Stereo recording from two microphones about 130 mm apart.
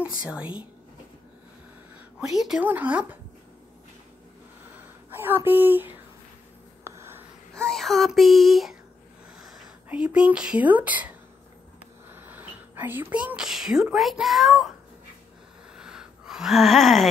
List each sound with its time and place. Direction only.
0.2 s speech: 5° right (ahead or behind)
2.1 s a child's voice: 5° right (ahead or behind)
5.1 s speech: 15° right (ahead or behind)
6.8 s a sound: 20° right (ahead or behind)
7.5 s a child's voice: 5° left (ahead or behind); by 11.1 s 10° right (ahead or behind)
12.1 s speech: 15° right (ahead or behind)
15.7 s a sound: 5° right (ahead or behind)